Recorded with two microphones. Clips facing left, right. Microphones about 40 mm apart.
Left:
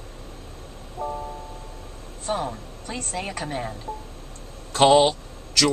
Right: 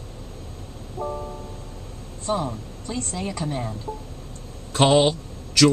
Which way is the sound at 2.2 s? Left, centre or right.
Left.